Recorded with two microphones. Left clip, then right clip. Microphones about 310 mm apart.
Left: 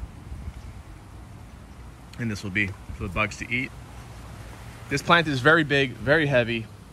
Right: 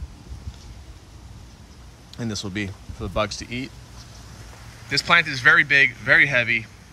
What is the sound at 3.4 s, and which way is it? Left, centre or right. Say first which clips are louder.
Speech: left 5 dB; right.